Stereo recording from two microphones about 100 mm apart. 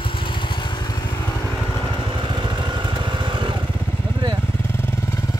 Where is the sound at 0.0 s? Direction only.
60° left (ahead or behind).